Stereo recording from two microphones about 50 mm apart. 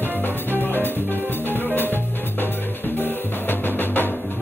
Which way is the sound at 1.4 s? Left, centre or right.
Left.